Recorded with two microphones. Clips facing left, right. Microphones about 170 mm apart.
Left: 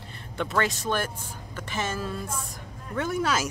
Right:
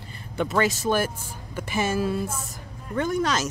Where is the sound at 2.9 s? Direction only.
5° left (ahead or behind).